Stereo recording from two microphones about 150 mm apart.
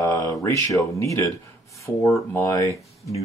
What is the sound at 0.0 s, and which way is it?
Speech, 25° left (ahead or behind).